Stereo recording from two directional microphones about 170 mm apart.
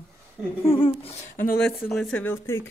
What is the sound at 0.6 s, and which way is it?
Humming, 30° left (ahead or behind).